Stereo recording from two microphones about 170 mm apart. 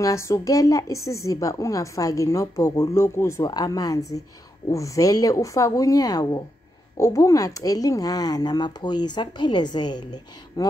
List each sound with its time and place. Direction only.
0.0 s a woman's voice: 20° left (ahead or behind)